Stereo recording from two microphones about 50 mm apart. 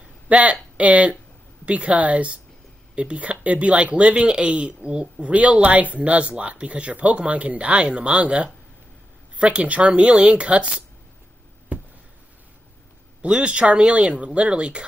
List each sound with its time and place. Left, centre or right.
0.3 s speech: right
13.2 s speech: right